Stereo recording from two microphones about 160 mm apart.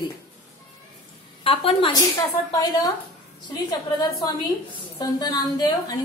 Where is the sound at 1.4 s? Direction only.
35° left (ahead or behind).